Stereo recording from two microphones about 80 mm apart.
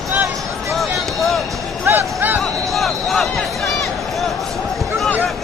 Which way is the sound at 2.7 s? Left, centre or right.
Centre.